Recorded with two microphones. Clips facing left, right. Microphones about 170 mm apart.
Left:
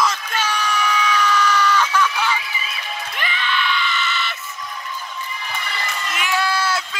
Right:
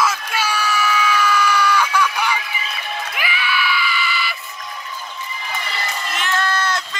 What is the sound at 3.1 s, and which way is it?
Screaming, 10° right (ahead or behind).